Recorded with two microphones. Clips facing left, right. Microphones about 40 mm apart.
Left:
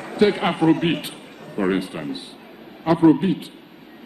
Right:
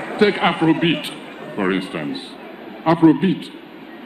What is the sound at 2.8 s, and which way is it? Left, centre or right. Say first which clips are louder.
Speech: right 2 dB; right.